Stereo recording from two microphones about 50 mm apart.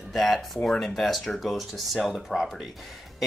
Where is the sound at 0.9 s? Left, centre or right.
Centre.